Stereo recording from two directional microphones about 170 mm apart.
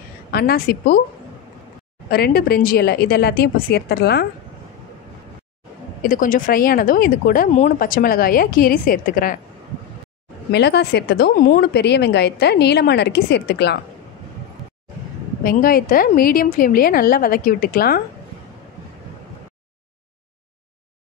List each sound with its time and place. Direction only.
0.3 s speech: 65° left (ahead or behind)
2.0 s speech: 65° left (ahead or behind)
6.0 s speech: 50° left (ahead or behind)
10.5 s speech: 80° left
15.4 s speech: 55° left (ahead or behind)